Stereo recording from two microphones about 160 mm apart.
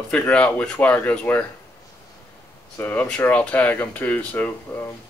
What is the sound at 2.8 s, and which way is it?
A man's voice, 10° left (ahead or behind).